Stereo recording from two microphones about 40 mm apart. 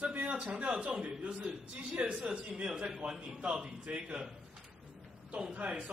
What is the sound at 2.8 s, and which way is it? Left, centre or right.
A man's voice, right.